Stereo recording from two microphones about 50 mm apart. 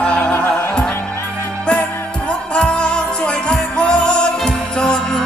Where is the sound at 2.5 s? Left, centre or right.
Left.